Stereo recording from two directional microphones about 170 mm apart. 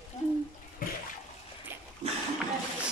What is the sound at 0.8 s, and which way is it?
Toilet flush, 55° left (ahead or behind).